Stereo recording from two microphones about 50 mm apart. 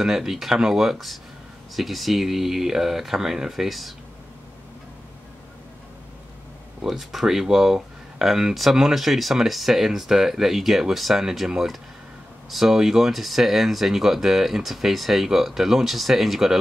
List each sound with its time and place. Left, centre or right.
0.0 s speech: centre
6.8 s speech: centre